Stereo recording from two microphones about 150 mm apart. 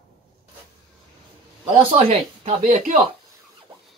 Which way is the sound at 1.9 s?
45° right (ahead or behind).